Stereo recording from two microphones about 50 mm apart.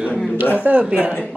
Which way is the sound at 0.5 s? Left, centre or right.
Right.